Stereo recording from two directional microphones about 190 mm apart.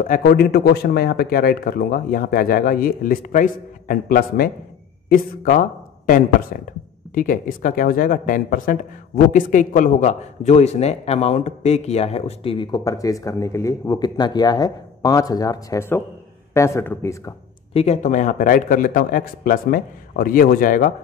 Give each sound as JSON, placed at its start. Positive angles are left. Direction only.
{"t": 0.2, "sound": "a man's voice", "side_deg": 55}
{"t": 17.7, "sound": "speech", "side_deg": 35}